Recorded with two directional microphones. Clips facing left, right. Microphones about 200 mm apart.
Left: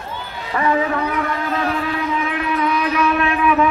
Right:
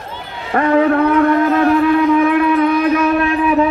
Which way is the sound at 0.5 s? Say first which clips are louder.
Right 7 dB; 55° right (ahead or behind).